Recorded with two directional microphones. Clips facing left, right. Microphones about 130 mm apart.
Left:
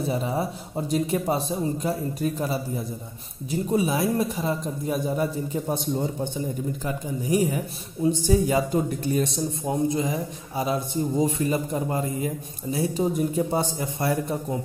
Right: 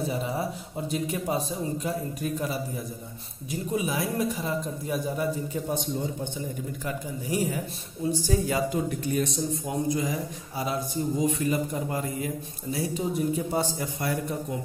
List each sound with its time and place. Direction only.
0.9 s speech: 35° left (ahead or behind)
3.7 s speech: 30° left (ahead or behind)
6.8 s speech: 20° left (ahead or behind)